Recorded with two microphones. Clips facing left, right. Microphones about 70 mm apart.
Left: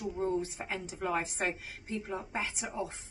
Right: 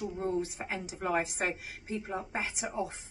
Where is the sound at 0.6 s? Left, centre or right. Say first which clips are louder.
Right 1 dB; centre.